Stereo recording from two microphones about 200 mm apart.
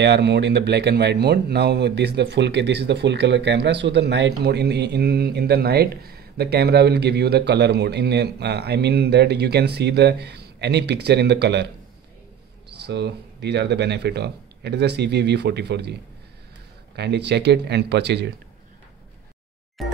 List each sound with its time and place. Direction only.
0.0 s speech: 60° right (ahead or behind)
12.7 s speech: 55° right (ahead or behind)
19.8 s music: centre (ahead or behind)